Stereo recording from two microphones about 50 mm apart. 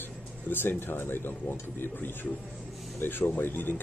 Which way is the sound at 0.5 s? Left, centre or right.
Left.